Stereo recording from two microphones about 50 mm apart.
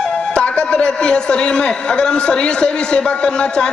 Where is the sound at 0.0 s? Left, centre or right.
Centre.